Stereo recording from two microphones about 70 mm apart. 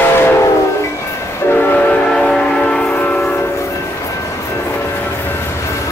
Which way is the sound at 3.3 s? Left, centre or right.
Left.